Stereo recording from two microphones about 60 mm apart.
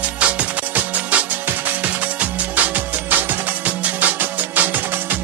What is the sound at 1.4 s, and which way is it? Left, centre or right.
Music, right.